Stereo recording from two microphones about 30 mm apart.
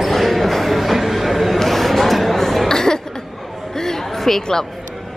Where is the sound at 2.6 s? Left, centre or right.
Left.